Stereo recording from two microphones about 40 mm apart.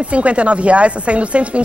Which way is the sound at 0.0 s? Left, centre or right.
Right.